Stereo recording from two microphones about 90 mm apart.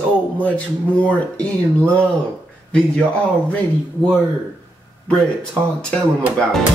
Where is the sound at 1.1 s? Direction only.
15° left (ahead or behind).